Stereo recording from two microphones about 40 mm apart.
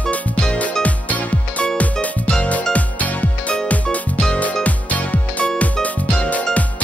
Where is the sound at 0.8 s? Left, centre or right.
Left.